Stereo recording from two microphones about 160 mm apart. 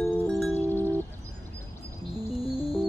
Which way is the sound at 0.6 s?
15° left (ahead or behind).